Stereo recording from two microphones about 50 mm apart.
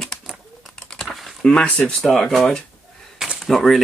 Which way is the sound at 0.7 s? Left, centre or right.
Centre.